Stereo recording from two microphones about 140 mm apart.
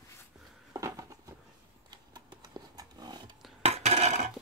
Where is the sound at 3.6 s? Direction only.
50° right (ahead or behind).